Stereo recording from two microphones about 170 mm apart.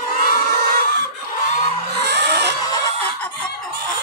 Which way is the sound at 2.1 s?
80° right.